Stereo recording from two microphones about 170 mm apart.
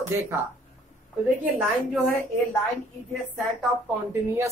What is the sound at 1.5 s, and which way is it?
Speech, centre (ahead or behind).